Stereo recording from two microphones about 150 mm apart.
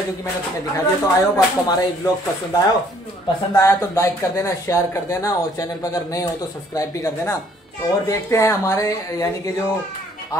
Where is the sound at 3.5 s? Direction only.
20° left (ahead or behind).